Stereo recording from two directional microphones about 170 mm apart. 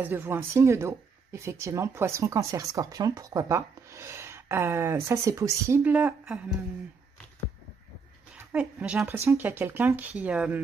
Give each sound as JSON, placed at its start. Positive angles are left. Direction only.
{"t": 0.0, "sound": "speech", "side_deg": -10}
{"t": 8.5, "sound": "speech", "side_deg": -10}